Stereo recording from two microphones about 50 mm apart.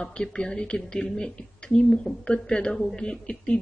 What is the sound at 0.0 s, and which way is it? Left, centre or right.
Speech, centre.